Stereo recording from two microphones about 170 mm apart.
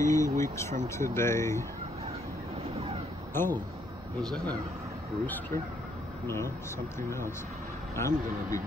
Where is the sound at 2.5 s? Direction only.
35° right (ahead or behind).